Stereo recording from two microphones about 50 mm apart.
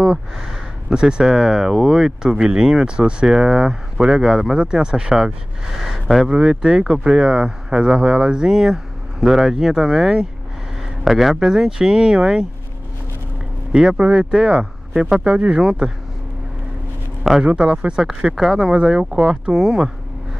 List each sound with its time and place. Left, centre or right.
0.8 s speech: centre
13.7 s speech: centre
17.4 s speech: right
19.5 s speech: centre